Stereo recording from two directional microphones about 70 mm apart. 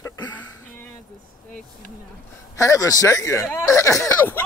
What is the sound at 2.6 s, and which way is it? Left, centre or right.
A man's voice, left.